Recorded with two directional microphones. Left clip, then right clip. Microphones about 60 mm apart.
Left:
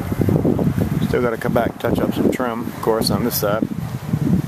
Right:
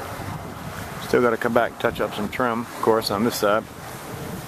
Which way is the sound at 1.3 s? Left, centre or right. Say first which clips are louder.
Left 1 dB; left.